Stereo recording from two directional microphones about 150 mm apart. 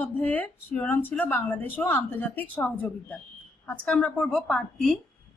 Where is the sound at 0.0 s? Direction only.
10° left (ahead or behind).